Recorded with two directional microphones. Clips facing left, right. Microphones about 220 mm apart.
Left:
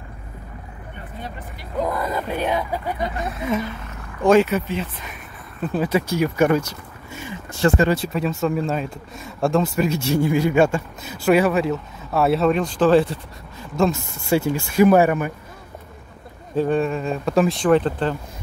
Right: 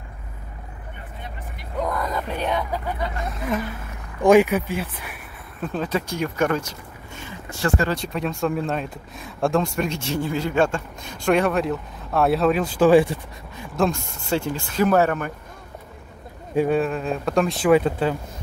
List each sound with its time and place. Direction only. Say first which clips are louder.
1.8 s speech: left 2 dB; 5° left (ahead or behind)
4.2 s speech: right 1 dB; 15° right (ahead or behind)
5.6 s speech: left 4 dB; 5° left (ahead or behind)
7.1 s a sound: left 6 dB; 10° left (ahead or behind)
7.6 s speech: left 5 dB; 20° left (ahead or behind)
7.9 s speech: left 4 dB; 5° left (ahead or behind); by 13.7 s 15° right (ahead or behind)
13.7 s speech: left 2 dB; 5° left (ahead or behind)
16.5 s speech: even; 5° right (ahead or behind)